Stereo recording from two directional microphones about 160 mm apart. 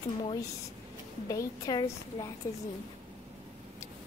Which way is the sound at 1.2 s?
20° left (ahead or behind).